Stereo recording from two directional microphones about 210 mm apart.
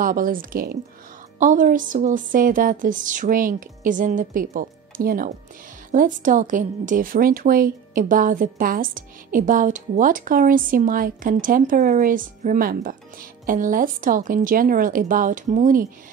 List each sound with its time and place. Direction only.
0.0 s a woman's voice: 40° right (ahead or behind)